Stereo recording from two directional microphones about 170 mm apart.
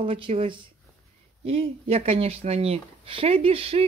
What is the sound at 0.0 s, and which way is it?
Speech, 30° right (ahead or behind).